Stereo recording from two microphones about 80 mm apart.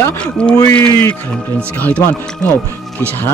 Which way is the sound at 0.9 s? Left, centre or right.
Left.